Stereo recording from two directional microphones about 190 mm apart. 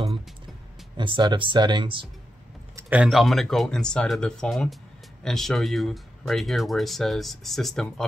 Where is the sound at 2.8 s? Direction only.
10° right (ahead or behind).